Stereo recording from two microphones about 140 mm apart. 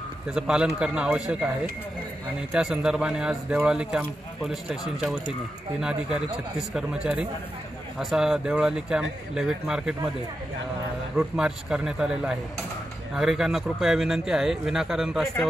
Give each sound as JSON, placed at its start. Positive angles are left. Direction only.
{"t": 0.3, "sound": "speech", "side_deg": -5}
{"t": 2.5, "sound": "speech", "side_deg": -5}
{"t": 11.1, "sound": "speech", "side_deg": -5}